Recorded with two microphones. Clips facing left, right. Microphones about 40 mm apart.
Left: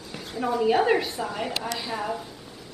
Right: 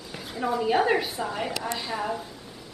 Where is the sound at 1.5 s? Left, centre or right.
Left.